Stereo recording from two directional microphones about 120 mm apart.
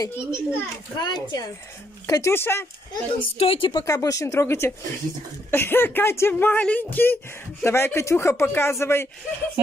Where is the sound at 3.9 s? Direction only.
25° left (ahead or behind).